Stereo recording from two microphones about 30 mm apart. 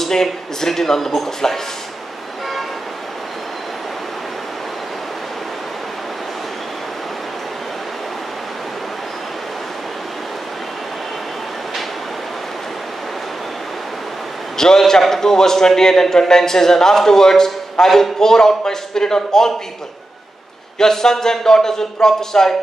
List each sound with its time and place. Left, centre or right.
0.0 s a man's voice: centre
14.6 s a man's voice: centre
20.8 s a man's voice: centre